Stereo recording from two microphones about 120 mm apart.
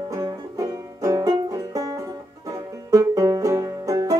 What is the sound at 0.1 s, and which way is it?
Music, 30° right (ahead or behind).